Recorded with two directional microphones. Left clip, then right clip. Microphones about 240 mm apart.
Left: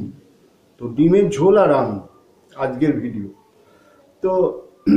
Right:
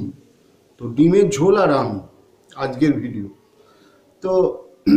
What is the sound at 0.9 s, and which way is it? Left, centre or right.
Speech, centre.